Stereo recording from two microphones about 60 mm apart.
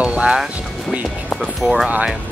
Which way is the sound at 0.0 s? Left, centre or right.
Centre.